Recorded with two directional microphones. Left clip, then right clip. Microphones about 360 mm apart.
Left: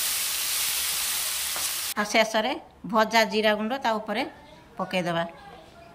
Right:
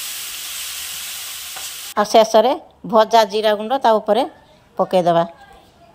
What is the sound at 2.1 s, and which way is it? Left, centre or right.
Frying, right.